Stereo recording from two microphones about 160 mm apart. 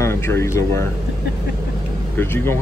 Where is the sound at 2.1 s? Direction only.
15° left (ahead or behind).